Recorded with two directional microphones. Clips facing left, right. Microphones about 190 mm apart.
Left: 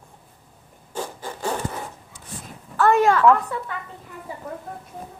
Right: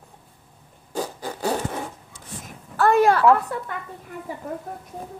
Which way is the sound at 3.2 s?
35° right (ahead or behind).